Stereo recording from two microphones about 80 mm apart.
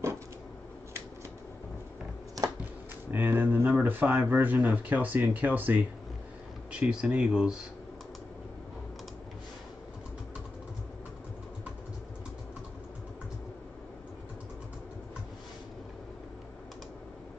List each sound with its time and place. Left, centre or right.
3.1 s speech: right
6.7 s speech: centre